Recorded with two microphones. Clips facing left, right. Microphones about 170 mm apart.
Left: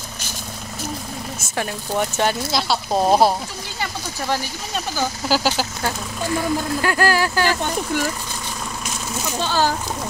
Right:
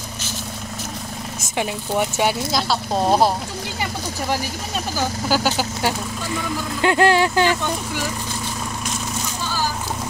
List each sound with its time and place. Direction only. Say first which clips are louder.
1.6 s speech: right 1 dB; 10° right (ahead or behind)
2.5 s speech: left 1 dB; 10° left (ahead or behind)
4.9 s speech: even; 5° left (ahead or behind)
6.8 s speech: right 6 dB; 20° right (ahead or behind)
9.4 s a sound: left 7 dB; 70° left (ahead or behind)